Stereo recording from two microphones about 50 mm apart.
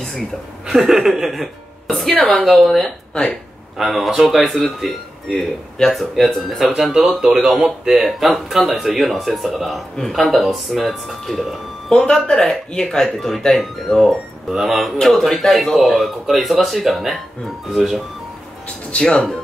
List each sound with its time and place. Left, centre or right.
0.7 s a woman's voice: centre
6.7 s speech: centre
18.9 s speech: centre